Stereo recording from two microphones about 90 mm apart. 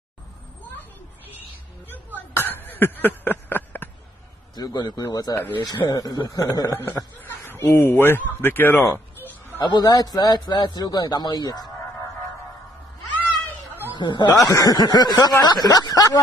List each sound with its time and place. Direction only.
2.3 s a sound: 25° left (ahead or behind)
4.6 s a man's voice: 50° left (ahead or behind); by 9.0 s 25° left (ahead or behind)
9.8 s speech: 50° left (ahead or behind)
13.9 s speech: 55° left (ahead or behind)